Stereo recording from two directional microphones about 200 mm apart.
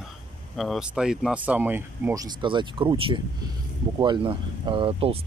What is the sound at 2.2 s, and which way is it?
Speech, 25° right (ahead or behind).